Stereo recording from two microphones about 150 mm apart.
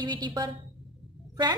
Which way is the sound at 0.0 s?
30° right (ahead or behind).